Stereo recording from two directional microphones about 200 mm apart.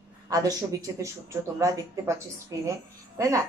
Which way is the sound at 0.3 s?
15° right (ahead or behind).